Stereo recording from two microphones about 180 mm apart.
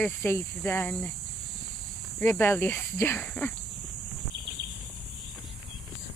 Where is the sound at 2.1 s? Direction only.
10° left (ahead or behind).